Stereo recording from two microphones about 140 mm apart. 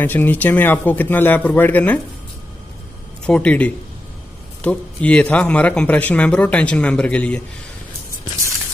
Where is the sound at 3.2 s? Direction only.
10° left (ahead or behind).